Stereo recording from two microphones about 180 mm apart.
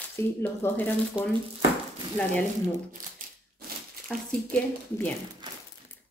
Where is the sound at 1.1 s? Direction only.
5° right (ahead or behind).